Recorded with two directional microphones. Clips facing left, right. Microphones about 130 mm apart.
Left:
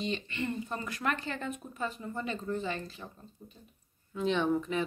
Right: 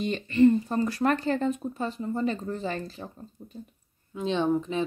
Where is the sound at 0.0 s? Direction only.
45° right (ahead or behind).